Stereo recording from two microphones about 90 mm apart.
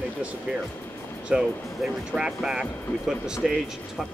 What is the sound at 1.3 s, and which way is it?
Speech, 15° right (ahead or behind).